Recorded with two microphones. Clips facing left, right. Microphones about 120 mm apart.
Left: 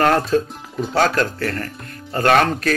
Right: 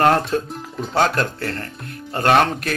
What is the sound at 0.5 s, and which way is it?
Speech, centre (ahead or behind).